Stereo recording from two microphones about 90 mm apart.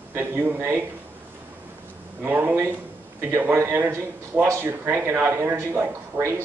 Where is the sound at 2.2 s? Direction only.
20° right (ahead or behind).